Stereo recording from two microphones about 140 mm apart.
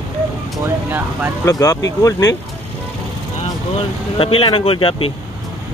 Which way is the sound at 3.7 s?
40° left (ahead or behind).